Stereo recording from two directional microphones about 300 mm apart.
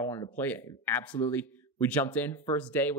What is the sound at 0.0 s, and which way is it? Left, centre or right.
Speech, centre.